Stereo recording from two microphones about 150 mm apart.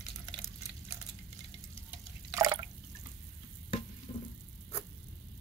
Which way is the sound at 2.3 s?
20° right (ahead or behind).